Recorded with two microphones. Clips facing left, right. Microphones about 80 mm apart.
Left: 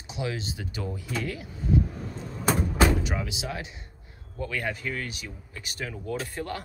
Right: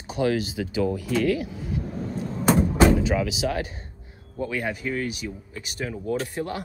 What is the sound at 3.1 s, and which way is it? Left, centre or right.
Speech, right.